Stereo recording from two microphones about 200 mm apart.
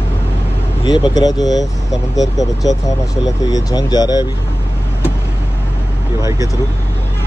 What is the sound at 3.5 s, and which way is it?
Speech, 20° left (ahead or behind).